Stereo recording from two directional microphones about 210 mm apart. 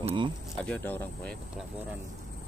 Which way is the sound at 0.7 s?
10° left (ahead or behind).